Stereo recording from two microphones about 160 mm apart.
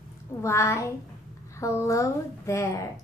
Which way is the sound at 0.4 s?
20° left (ahead or behind).